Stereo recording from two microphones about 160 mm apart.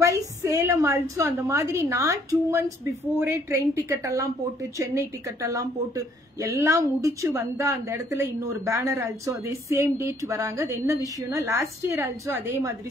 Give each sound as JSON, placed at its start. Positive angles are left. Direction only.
{"t": 0.0, "sound": "a woman's voice", "side_deg": -20}